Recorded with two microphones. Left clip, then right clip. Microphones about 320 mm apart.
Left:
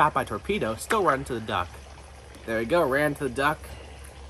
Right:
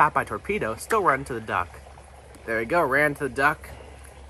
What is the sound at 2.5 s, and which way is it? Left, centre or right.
Speech, centre.